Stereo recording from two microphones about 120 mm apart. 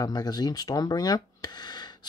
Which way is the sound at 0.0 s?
35° left (ahead or behind).